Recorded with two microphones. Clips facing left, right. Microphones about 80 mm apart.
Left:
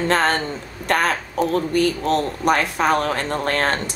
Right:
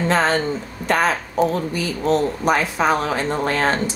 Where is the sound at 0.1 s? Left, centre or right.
Left.